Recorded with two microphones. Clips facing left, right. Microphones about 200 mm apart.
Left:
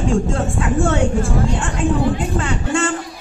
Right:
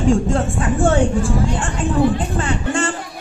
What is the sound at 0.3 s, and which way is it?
Speech, 30° right (ahead or behind).